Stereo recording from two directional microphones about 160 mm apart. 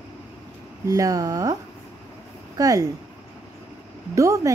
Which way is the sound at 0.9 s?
20° right (ahead or behind).